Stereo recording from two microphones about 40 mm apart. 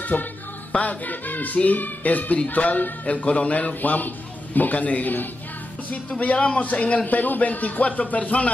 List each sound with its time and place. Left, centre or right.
0.0 s music: left
5.9 s a man's voice: left